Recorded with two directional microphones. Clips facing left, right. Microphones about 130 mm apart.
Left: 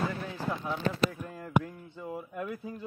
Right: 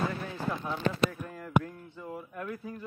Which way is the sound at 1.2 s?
20° left (ahead or behind).